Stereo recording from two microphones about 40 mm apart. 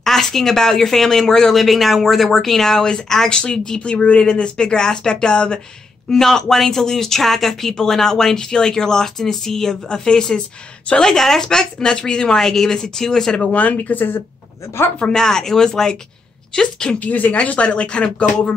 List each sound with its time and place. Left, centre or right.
0.0 s speech: centre
1.6 s speech: centre; by 5.6 s left
6.0 s speech: centre
13.4 s speech: left
13.9 s speech: left
15.0 s speech: centre
17.0 s speech: left
17.4 s speech: left